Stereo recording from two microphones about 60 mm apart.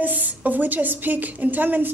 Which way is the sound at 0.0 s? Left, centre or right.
Right.